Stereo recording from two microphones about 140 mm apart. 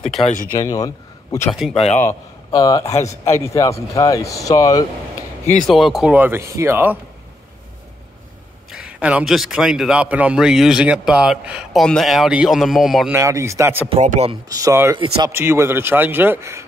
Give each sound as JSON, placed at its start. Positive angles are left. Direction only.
{"t": 0.6, "sound": "speech", "side_deg": 25}
{"t": 1.5, "sound": "a man's voice", "side_deg": 0}
{"t": 1.8, "sound": "a man's voice", "side_deg": 55}
{"t": 2.0, "sound": "a man's voice", "side_deg": 25}
{"t": 5.7, "sound": "a man's voice", "side_deg": 0}
{"t": 6.1, "sound": "a man's voice", "side_deg": -15}
{"t": 8.6, "sound": "a man's voice", "side_deg": -5}
{"t": 13.1, "sound": "speech", "side_deg": -20}
{"t": 13.8, "sound": "speech", "side_deg": -50}
{"t": 14.6, "sound": "a man's voice", "side_deg": -20}